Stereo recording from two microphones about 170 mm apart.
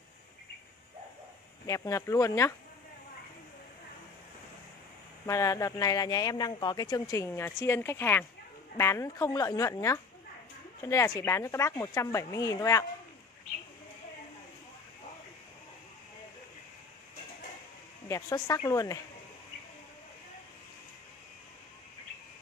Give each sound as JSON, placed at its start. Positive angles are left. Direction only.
{"t": 1.7, "sound": "speech", "side_deg": 20}
{"t": 5.2, "sound": "speech", "side_deg": 20}
{"t": 18.0, "sound": "speech", "side_deg": 20}